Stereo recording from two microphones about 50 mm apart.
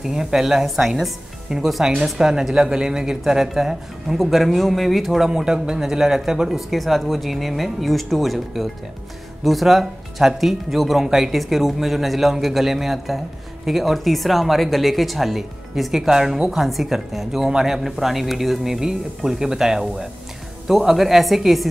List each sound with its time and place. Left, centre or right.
0.0 s speech: centre